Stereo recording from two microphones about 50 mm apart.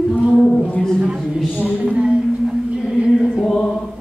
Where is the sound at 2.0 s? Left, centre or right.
Right.